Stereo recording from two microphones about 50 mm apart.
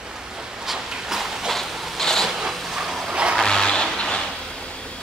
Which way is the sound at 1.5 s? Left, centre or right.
Centre.